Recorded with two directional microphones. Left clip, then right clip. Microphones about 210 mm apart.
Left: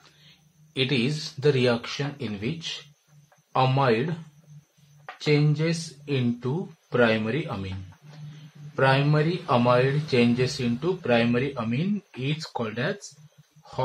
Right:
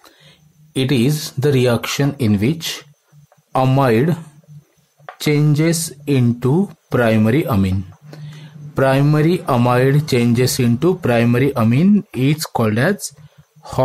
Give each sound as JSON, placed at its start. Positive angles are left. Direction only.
{"t": 0.7, "sound": "speech", "side_deg": -50}
{"t": 5.2, "sound": "speech", "side_deg": -50}
{"t": 8.7, "sound": "speech", "side_deg": -50}